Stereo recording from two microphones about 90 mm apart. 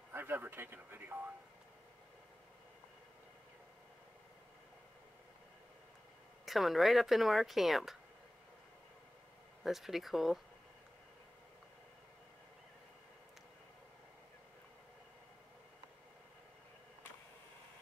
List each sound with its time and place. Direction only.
0.1 s speech: 25° right (ahead or behind)
6.4 s speech: centre (ahead or behind)
9.6 s speech: 5° right (ahead or behind)